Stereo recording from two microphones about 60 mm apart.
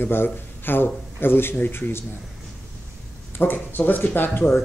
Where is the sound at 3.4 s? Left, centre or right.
Left.